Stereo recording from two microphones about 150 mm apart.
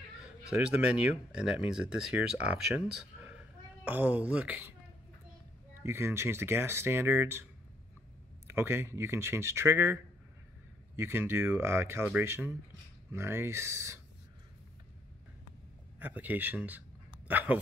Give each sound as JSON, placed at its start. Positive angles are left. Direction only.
{"t": 0.5, "sound": "speech", "side_deg": -5}
{"t": 3.2, "sound": "a sound", "side_deg": -10}
{"t": 5.8, "sound": "speech", "side_deg": -15}
{"t": 8.5, "sound": "speech", "side_deg": -15}
{"t": 11.0, "sound": "speech", "side_deg": -15}
{"t": 16.0, "sound": "speech", "side_deg": -10}